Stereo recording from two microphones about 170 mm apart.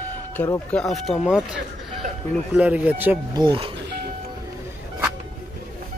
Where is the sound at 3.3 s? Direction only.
30° right (ahead or behind).